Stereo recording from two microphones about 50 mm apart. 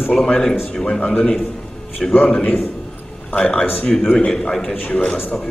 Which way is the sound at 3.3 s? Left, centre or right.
Left.